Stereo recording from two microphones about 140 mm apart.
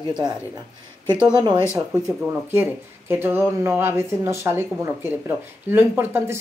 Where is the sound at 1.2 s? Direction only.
30° right (ahead or behind).